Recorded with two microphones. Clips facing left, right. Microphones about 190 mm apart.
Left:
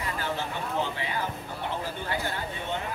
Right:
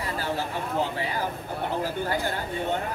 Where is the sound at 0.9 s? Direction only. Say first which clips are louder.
Right 3 dB; 40° right (ahead or behind).